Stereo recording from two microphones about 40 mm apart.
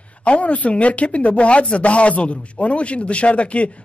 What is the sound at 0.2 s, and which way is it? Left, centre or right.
Speech, left.